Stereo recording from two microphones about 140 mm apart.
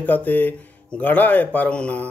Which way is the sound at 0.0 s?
15° left (ahead or behind).